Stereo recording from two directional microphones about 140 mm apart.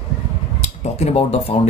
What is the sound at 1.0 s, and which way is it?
Speech, 45° left (ahead or behind).